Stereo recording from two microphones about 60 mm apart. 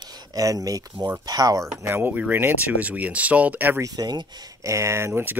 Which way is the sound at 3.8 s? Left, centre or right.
Right.